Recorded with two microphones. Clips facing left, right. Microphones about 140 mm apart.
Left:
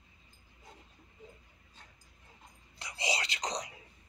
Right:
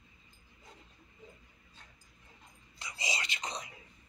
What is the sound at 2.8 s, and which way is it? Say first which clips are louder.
Whispering: left 4 dB; 65° left (ahead or behind).